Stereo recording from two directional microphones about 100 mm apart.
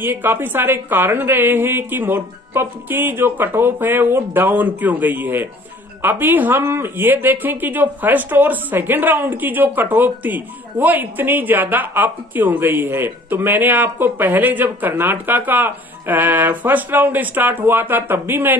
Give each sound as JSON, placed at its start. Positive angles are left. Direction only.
{"t": 0.0, "sound": "speech", "side_deg": -20}